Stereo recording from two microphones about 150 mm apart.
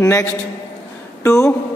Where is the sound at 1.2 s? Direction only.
20° left (ahead or behind).